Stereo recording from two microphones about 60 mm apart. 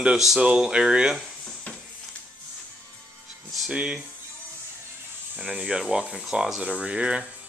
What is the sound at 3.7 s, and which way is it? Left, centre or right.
Speech, centre.